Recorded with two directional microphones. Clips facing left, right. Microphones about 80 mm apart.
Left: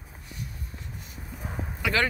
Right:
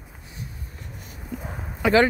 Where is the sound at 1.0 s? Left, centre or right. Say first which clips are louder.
Right 7 dB; right.